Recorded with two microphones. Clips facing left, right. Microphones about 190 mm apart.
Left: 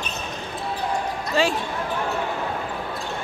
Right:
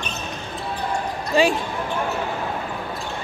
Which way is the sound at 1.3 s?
15° right (ahead or behind).